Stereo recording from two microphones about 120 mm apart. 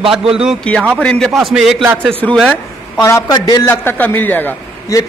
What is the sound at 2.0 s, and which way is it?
Speech, 10° left (ahead or behind).